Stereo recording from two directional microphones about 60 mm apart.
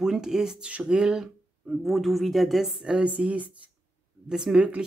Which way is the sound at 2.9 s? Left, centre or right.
Centre.